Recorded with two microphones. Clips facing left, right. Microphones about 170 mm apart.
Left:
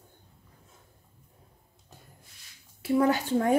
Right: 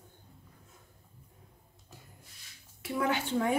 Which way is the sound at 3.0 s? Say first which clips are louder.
Left 4 dB; 40° left (ahead or behind).